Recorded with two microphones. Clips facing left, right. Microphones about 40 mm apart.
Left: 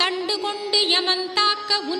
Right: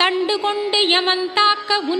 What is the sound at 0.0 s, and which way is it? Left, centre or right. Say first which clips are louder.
Music: right 6 dB; right.